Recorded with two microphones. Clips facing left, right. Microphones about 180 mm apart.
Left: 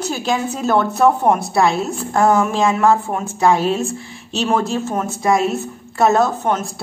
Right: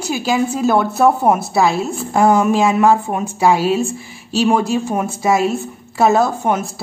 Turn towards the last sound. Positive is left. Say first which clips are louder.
# right 1 dB
turn(degrees=-5)  # may be behind; listen again after turning